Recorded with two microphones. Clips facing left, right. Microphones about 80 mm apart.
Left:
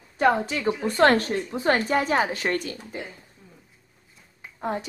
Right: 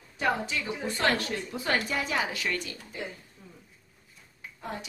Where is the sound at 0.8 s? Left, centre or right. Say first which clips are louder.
Left 9 dB; left.